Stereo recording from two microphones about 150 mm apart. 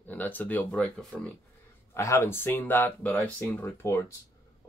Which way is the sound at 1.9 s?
20° left (ahead or behind).